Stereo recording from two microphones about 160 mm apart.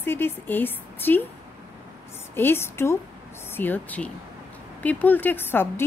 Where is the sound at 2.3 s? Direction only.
15° left (ahead or behind).